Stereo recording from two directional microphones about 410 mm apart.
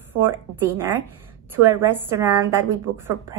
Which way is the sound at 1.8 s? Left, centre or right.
Centre.